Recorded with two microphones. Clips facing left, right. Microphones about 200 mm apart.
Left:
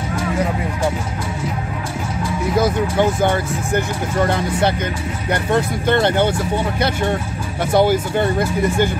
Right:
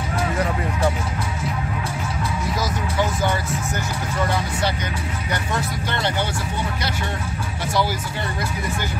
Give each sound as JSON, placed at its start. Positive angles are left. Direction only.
{"t": 2.5, "sound": "speech", "side_deg": 55}
{"t": 7.7, "sound": "speech", "side_deg": 55}